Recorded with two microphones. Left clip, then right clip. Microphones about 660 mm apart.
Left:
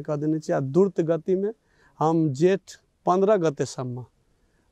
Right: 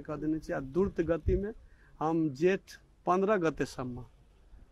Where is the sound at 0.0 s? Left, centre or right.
Left.